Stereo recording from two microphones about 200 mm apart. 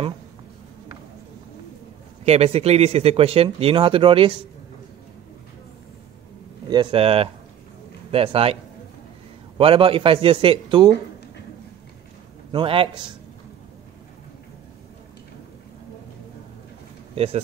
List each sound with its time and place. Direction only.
2.2 s speech: 30° right (ahead or behind)
6.7 s speech: 25° right (ahead or behind)
9.6 s speech: 25° right (ahead or behind)
12.5 s speech: 25° right (ahead or behind)
17.1 s speech: 30° right (ahead or behind)